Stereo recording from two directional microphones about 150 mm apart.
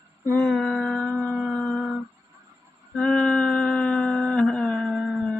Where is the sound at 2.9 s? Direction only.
5° left (ahead or behind).